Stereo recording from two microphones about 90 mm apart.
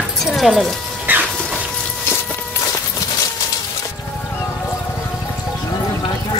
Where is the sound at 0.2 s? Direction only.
Centre (ahead or behind).